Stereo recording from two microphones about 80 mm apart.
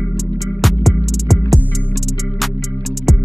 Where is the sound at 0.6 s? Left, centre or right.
Centre.